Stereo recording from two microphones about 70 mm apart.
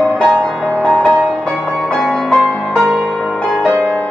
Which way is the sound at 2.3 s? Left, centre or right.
Centre.